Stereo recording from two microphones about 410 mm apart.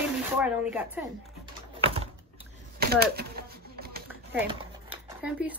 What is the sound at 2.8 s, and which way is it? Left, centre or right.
Typewriter, right.